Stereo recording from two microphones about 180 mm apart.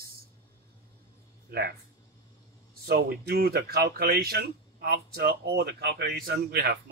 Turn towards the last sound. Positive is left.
turn(degrees=-55)  # may be behind; listen again after turning